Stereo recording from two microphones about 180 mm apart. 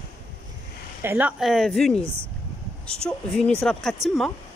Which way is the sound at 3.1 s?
5° left (ahead or behind).